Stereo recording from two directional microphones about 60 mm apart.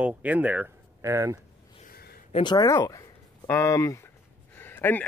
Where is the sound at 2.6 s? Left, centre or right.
Left.